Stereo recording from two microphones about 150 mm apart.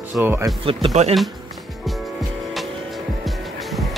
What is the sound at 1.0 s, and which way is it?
Speech, 45° right (ahead or behind).